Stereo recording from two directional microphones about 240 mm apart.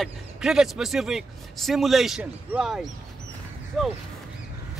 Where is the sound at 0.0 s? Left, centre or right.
Centre.